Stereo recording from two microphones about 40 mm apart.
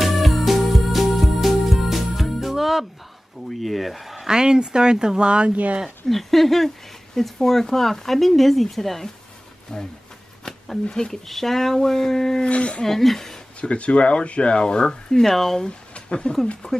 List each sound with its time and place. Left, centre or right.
0.0 s music: centre
3.6 s speech: centre
4.3 s speech: centre
6.0 s speech: centre
9.7 s speech: centre
10.9 s speech: centre
11.2 s speech: centre
12.4 s speech: left
12.8 s speech: centre
13.6 s speech: left
15.2 s speech: centre
15.9 s a sound: left